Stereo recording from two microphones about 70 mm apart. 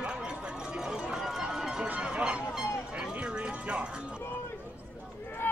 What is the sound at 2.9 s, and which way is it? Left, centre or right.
Music, centre.